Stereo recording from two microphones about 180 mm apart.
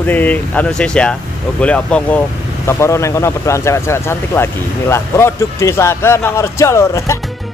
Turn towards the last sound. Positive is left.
turn(degrees=15)  # may be behind; listen again after turning